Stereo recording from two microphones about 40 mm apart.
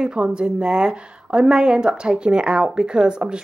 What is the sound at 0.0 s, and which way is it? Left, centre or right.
Speech, right.